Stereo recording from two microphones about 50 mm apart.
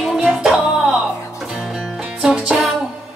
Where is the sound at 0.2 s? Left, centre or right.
Centre.